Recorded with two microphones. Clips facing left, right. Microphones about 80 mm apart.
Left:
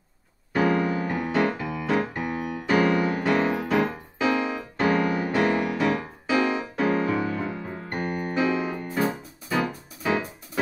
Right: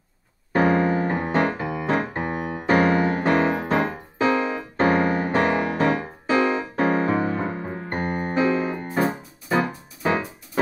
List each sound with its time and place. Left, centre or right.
0.5 s piano: right
7.9 s keyboard: right
10.0 s music: right